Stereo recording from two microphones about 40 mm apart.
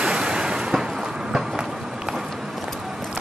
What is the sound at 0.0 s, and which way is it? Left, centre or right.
Vehicle, centre.